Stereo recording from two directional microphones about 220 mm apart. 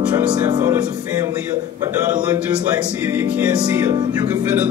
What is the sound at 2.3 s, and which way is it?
Music, 10° right (ahead or behind).